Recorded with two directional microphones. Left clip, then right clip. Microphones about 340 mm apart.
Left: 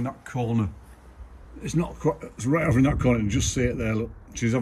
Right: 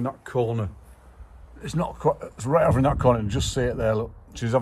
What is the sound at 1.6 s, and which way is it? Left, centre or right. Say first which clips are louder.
Speech: right 2 dB; right.